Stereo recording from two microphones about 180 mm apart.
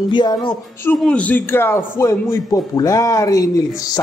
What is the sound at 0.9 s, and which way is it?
A man's voice, 5° left (ahead or behind).